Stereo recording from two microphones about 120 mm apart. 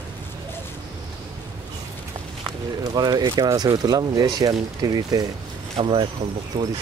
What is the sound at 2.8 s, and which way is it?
Speech, 30° right (ahead or behind).